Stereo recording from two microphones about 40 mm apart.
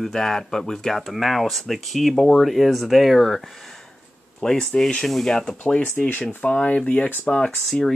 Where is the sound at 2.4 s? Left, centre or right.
Centre.